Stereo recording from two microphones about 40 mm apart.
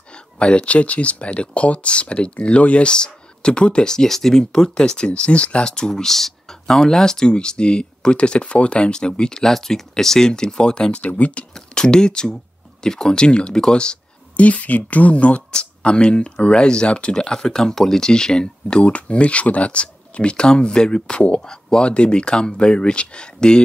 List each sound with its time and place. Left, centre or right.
0.1 s speech: left
5.7 s speech: centre
9.5 s speech: centre; by 11.1 s left
11.1 s speech: left
11.5 s speech: centre
14.3 s speech: left